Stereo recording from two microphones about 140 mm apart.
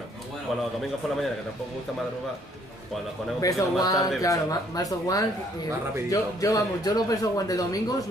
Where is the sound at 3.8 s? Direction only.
25° left (ahead or behind).